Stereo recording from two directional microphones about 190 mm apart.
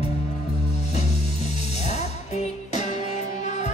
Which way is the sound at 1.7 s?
35° left (ahead or behind).